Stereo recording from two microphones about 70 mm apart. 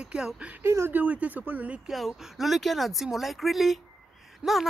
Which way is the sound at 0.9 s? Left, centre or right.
Centre.